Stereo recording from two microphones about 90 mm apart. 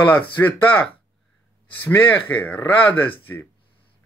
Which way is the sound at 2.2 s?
20° left (ahead or behind).